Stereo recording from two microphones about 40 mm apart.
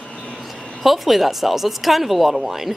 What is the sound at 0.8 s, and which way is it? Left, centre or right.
Speech, centre.